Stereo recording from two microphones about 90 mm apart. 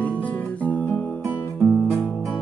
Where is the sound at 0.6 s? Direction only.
15° left (ahead or behind).